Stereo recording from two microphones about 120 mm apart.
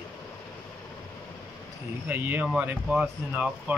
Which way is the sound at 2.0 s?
15° right (ahead or behind).